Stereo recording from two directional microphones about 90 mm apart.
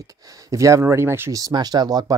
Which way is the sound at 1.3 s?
45° right (ahead or behind).